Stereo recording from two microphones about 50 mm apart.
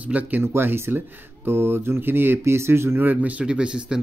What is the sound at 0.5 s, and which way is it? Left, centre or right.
Speech, right.